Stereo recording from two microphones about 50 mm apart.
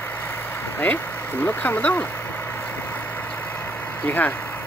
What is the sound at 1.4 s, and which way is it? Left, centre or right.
Speech, left.